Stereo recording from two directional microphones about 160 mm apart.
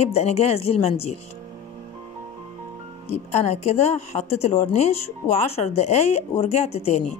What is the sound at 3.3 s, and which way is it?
A woman's voice, 45° left (ahead or behind).